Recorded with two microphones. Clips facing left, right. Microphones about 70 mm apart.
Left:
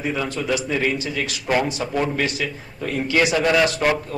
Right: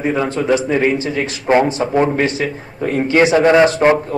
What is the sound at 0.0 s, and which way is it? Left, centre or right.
A man's voice, right.